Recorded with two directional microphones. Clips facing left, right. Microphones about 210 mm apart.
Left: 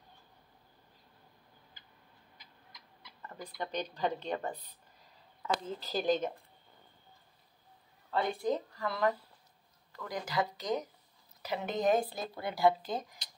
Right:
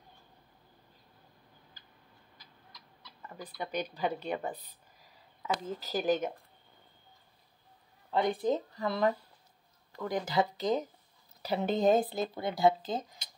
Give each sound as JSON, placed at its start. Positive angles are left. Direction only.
{"t": 3.5, "sound": "a woman's voice", "side_deg": -10}
{"t": 8.1, "sound": "speech", "side_deg": -20}